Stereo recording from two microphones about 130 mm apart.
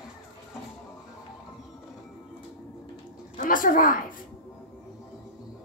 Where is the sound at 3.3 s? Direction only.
90° left.